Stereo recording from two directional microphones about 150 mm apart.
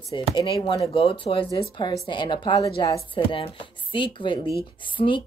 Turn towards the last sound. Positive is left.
turn(degrees=35)  # may be behind; listen again after turning